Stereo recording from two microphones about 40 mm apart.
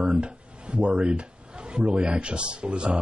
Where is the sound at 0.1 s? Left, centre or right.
Right.